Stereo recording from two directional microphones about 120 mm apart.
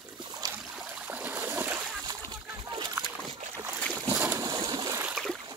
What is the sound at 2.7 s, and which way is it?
Boat, 40° right (ahead or behind).